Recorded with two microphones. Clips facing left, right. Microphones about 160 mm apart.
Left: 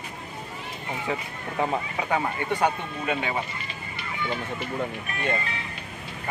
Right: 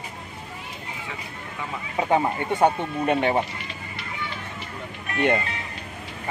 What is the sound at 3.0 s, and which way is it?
Speech, 45° right (ahead or behind).